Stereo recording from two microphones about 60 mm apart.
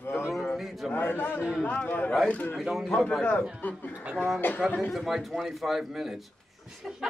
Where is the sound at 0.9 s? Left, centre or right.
Left.